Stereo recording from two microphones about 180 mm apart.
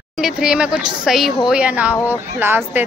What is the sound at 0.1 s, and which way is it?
A woman's voice, 5° right (ahead or behind).